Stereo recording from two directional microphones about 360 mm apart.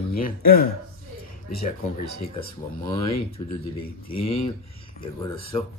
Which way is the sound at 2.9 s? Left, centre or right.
Centre.